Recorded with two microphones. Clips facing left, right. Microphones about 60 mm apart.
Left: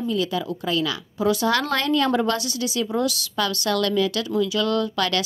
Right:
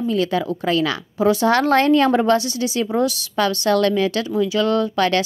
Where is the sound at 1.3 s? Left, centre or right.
Right.